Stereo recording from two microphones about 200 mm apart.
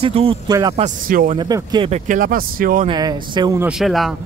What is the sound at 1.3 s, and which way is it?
Speech, 20° right (ahead or behind).